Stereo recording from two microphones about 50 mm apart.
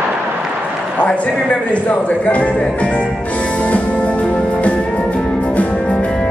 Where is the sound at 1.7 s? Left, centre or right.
Left.